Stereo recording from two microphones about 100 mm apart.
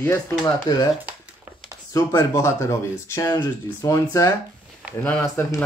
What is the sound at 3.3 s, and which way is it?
Speech, 45° left (ahead or behind).